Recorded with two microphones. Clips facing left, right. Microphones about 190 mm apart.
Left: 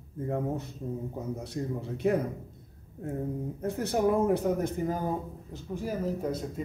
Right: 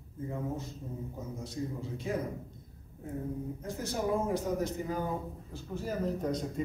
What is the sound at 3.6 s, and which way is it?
Speech, 60° left (ahead or behind).